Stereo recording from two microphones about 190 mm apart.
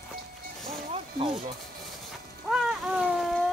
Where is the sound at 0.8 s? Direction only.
30° right (ahead or behind).